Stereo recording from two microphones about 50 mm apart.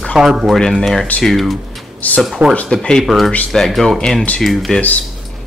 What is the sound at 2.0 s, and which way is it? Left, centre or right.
Speech, left.